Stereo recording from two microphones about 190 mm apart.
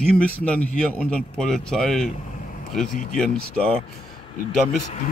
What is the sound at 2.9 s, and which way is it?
Speech, 45° left (ahead or behind).